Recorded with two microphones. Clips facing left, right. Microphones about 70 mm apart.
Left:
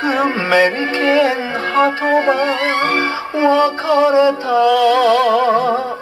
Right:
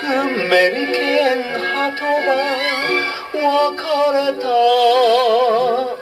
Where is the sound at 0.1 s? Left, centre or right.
Centre.